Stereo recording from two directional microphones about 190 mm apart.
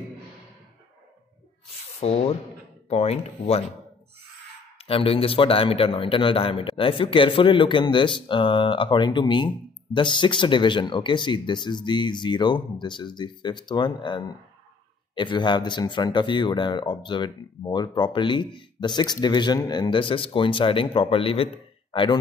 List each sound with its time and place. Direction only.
2.0 s speech: 35° left (ahead or behind)
4.7 s speech: 30° left (ahead or behind)